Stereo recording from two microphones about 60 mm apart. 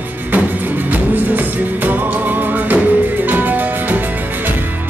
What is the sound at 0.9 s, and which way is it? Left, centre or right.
Music, right.